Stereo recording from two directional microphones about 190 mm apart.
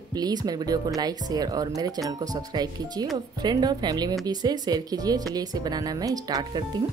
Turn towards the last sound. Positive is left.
turn(degrees=-20)  # may be behind; listen again after turning